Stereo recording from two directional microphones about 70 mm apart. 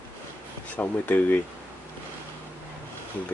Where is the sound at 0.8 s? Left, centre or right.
Left.